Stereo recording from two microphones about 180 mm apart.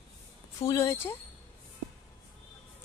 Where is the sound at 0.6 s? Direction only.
15° left (ahead or behind).